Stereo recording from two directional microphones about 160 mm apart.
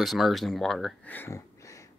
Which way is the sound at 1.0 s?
15° left (ahead or behind).